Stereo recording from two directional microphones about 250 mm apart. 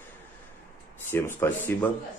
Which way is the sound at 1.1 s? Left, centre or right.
Centre.